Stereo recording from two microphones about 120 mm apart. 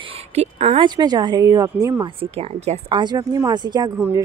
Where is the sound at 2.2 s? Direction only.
55° right (ahead or behind).